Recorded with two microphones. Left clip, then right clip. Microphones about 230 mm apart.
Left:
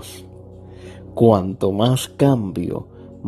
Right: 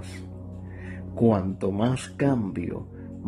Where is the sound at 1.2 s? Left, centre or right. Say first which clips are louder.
Left 8 dB; left.